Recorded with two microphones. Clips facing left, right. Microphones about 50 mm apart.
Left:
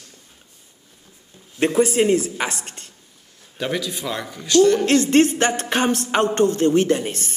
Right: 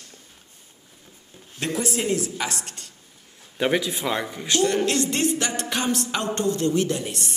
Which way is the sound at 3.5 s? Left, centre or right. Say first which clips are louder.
Right 2 dB; right.